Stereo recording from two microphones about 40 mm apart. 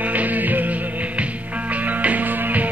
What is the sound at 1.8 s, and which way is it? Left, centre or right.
Music, right.